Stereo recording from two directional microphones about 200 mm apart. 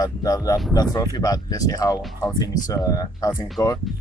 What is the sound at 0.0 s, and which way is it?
Speech, 15° left (ahead or behind).